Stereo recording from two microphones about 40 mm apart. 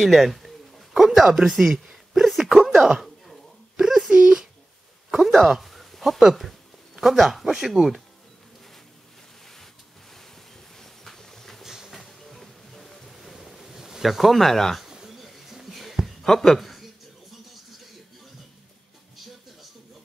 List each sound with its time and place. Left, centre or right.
0.0 s bird: centre
3.7 s a sound: centre
5.1 s speech: centre
10.8 s a sound: centre
11.6 s train: centre
12.0 s music: centre
14.9 s bird: centre
15.1 s a sound: centre
16.3 s speech: centre